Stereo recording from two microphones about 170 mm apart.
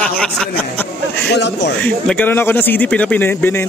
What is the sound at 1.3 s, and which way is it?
Speech, 90° left.